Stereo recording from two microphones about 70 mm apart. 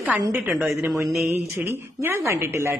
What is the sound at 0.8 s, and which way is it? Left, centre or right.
A woman's voice, right.